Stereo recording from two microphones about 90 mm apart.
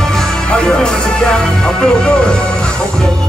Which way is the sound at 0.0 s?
5° left (ahead or behind).